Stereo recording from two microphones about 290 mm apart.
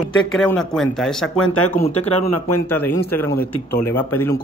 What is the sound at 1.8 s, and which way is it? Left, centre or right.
Speech, left.